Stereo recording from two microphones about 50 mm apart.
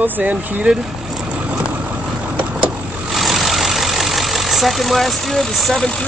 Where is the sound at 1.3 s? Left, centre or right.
Right.